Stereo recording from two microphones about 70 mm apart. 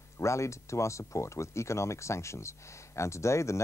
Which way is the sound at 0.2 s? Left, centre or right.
Left.